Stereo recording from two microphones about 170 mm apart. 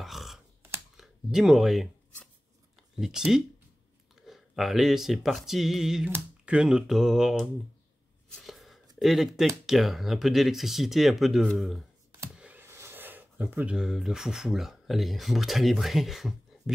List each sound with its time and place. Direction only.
0.0 s typing: centre (ahead or behind)
0.9 s speech: 5° right (ahead or behind)
3.0 s speech: 5° right (ahead or behind)
8.4 s a sound: centre (ahead or behind)
9.0 s speech: centre (ahead or behind)